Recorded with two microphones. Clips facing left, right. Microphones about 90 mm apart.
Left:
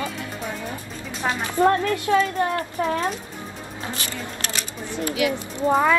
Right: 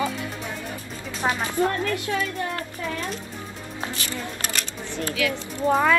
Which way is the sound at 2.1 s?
40° left (ahead or behind).